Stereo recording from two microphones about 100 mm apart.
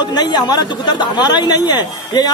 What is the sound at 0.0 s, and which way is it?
Speech, 45° left (ahead or behind).